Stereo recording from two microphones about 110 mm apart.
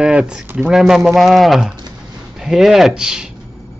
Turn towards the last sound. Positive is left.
turn(degrees=-5)  # may be behind; listen again after turning